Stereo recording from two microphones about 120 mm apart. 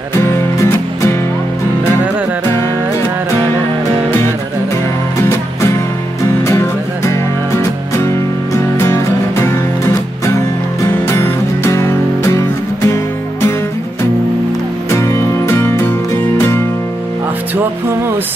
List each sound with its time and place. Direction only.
0.1 s music: 25° left (ahead or behind)
8.7 s music: 20° left (ahead or behind)
14.9 s music: 25° left (ahead or behind)